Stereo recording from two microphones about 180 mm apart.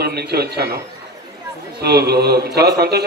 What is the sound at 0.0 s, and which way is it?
Speech, 60° right (ahead or behind).